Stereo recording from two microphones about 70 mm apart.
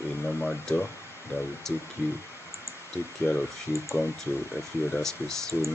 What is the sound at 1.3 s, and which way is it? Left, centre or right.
Speech, left.